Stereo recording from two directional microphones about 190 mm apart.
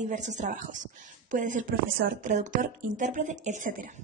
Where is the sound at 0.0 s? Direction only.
40° right (ahead or behind).